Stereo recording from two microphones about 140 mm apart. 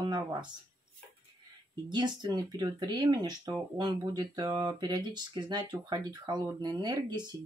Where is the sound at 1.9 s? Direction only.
35° right (ahead or behind).